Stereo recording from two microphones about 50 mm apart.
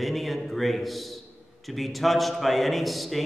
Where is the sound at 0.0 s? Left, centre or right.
Centre.